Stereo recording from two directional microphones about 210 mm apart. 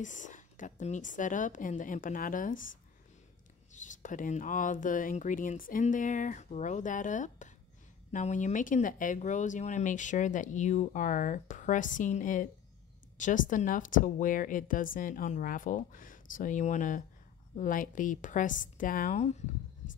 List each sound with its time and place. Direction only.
0.0 s speech: 35° left (ahead or behind)
3.7 s speech: 35° left (ahead or behind)